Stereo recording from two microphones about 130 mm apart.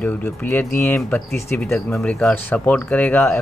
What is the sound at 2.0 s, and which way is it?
Speech, 5° left (ahead or behind).